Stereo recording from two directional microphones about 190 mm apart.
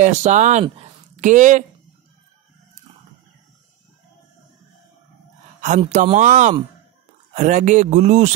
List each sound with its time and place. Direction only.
0.0 s speech: 40° right (ahead or behind)
5.8 s speech: 35° right (ahead or behind)